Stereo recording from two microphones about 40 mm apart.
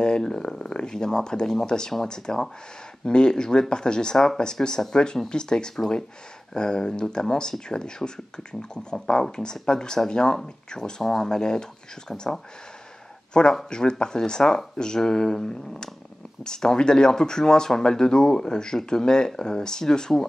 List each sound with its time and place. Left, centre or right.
0.0 s speech: centre